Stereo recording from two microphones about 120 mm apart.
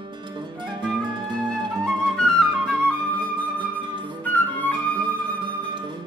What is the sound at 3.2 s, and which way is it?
Flute, 40° right (ahead or behind).